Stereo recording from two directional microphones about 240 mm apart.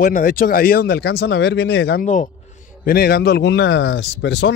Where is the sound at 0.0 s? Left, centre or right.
Left.